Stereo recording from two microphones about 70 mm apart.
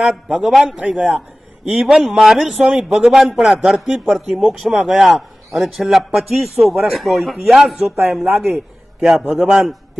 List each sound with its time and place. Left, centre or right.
0.0 s a man's voice: centre
0.7 s a man's voice: centre
9.2 s a man's voice: right
9.5 s a man's voice: centre